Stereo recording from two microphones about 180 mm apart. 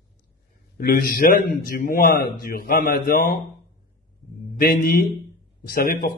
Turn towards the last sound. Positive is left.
turn(degrees=55)  # may be behind; listen again after turning